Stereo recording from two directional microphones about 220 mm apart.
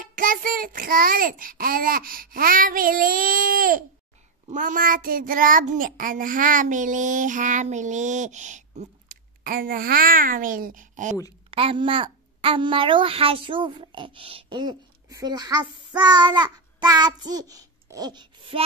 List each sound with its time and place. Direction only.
0.0 s child singing: 40° right (ahead or behind)
11.5 s a child's voice: 25° right (ahead or behind)